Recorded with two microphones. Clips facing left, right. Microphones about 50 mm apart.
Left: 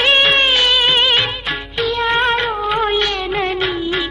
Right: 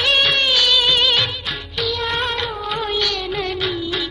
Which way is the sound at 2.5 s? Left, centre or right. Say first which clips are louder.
Left 6 dB; centre.